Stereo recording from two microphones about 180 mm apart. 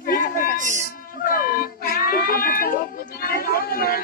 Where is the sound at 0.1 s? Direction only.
55° left (ahead or behind).